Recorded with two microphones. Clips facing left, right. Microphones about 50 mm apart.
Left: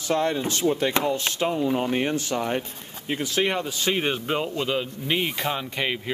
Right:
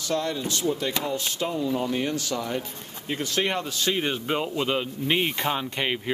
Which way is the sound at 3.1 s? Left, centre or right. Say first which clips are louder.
Left 2 dB; centre.